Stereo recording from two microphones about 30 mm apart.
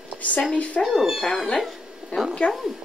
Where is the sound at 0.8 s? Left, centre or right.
Centre.